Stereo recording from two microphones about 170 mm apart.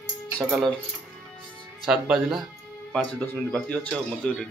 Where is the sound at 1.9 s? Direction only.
5° right (ahead or behind).